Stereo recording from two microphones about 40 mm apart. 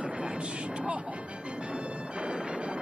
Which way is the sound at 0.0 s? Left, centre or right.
Right.